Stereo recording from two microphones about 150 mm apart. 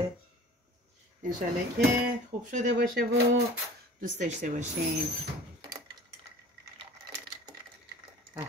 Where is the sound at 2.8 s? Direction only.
90° right.